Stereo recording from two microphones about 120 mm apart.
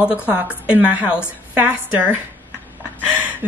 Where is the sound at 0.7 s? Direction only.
10° right (ahead or behind).